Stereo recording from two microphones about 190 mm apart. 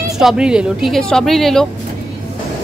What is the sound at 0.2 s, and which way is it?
A woman's voice, 5° right (ahead or behind).